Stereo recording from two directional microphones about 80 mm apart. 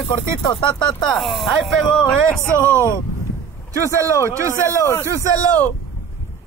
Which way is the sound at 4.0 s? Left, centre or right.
Right.